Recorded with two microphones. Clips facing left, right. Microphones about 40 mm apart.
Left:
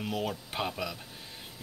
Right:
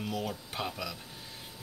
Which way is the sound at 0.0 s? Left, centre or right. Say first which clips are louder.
Left 2 dB; centre.